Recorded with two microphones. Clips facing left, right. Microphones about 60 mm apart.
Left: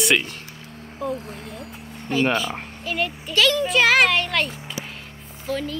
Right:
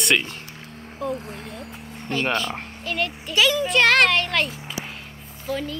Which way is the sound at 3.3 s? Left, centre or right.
Centre.